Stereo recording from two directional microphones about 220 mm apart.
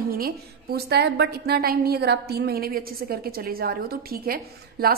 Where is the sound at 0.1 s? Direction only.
45° right (ahead or behind).